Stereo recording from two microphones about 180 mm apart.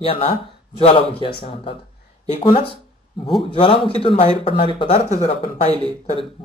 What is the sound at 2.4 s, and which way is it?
Speech, 30° left (ahead or behind).